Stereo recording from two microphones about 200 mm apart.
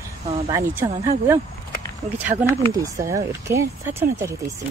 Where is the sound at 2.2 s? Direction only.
30° right (ahead or behind).